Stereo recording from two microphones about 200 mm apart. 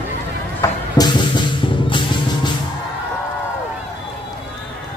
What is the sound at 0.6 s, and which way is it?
Music, 20° left (ahead or behind).